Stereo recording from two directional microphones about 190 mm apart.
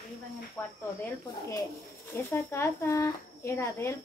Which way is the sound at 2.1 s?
10° left (ahead or behind).